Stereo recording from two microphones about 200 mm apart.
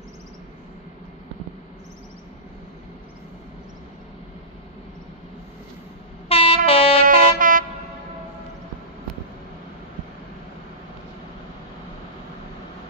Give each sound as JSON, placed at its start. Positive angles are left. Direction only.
{"t": 6.2, "sound": "train", "side_deg": 30}
{"t": 7.2, "sound": "vehicle", "side_deg": -45}